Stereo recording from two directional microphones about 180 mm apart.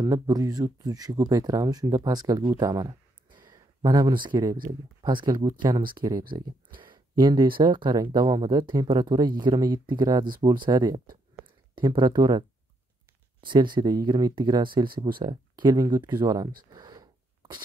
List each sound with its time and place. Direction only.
0.0 s speech: 20° right (ahead or behind)
11.4 s a sound: 5° right (ahead or behind)
11.7 s speech: 25° right (ahead or behind)
13.7 s speech: 25° right (ahead or behind)
16.7 s sneeze: 20° right (ahead or behind)